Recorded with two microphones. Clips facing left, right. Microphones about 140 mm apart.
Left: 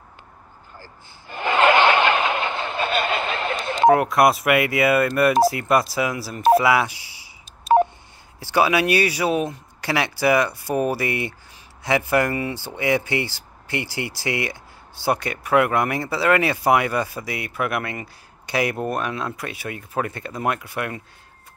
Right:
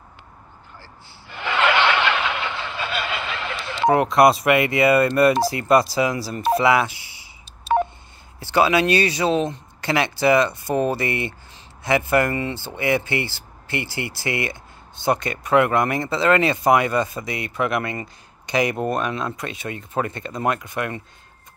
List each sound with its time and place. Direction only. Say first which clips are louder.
0.7 s snicker: left 3 dB; 45° left (ahead or behind)
3.9 s speech: right 6 dB; centre (ahead or behind)
8.4 s speech: right 1 dB; 10° left (ahead or behind)